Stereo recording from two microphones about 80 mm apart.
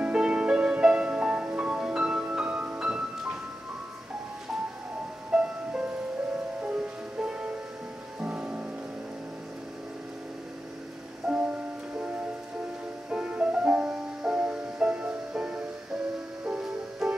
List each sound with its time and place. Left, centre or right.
0.0 s music: centre
5.3 s music: centre
11.3 s music: centre
13.1 s music: centre